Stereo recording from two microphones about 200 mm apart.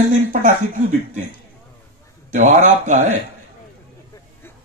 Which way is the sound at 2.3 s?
35° right (ahead or behind).